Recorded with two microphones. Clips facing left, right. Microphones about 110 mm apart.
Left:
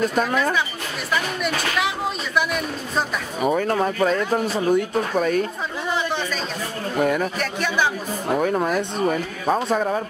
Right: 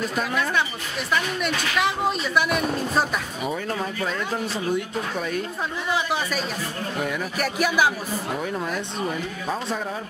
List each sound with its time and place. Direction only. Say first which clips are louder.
0.1 s speech: left 5 dB; 45° left (ahead or behind)
1.4 s speech: left 1 dB; centre (ahead or behind)
3.4 s speech: left 10 dB; 50° left (ahead or behind)
5.9 s speech: even; 5° right (ahead or behind)
7.0 s speech: left 8 dB; 50° left (ahead or behind)
7.3 s speech: right 1 dB; 10° right (ahead or behind)
8.4 s speech: left 7 dB; 55° left (ahead or behind)